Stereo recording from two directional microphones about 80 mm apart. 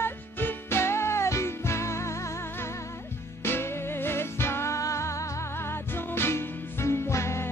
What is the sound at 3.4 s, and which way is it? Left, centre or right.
Music, left.